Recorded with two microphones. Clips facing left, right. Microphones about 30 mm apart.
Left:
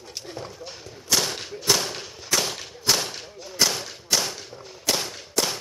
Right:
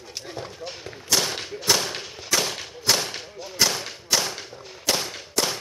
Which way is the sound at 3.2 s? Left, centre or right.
Centre.